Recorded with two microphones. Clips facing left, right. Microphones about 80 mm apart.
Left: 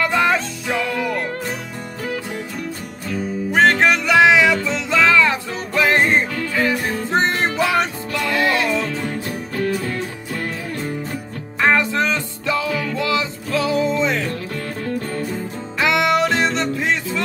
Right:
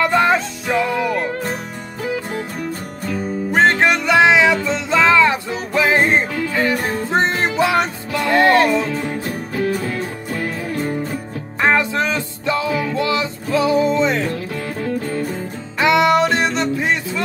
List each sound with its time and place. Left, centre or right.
0.0 s music: centre
3.6 s music: centre
7.1 s music: centre
8.3 s music: right
9.8 s music: centre
11.6 s music: centre